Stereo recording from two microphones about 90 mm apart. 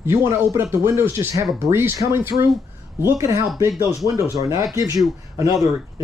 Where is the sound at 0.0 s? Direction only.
35° right (ahead or behind).